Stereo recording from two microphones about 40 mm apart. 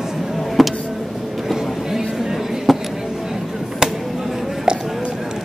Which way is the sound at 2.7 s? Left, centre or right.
Centre.